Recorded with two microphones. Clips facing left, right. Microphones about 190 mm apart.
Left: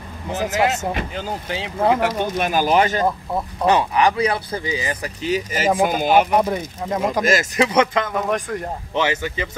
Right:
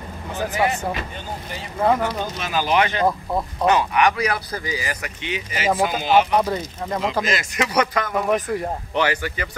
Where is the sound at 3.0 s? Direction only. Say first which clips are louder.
Right 1 dB; 5° left (ahead or behind).